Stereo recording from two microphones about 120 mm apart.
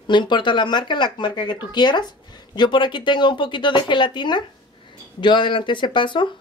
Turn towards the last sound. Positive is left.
turn(degrees=40)  # may be behind; listen again after turning